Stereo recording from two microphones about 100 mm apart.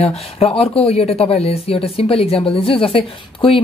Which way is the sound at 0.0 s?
80° left.